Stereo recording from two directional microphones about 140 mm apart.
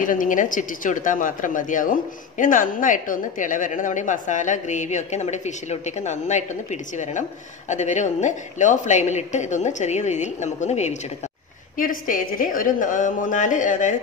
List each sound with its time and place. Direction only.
0.0 s speech: 70° left (ahead or behind); by 11.0 s 55° left (ahead or behind)
11.7 s a woman's voice: 80° left; by 13.9 s 60° left (ahead or behind)